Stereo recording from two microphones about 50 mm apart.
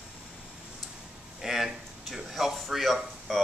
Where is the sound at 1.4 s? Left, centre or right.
Centre.